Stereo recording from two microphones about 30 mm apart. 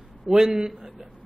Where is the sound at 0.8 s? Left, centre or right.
Centre.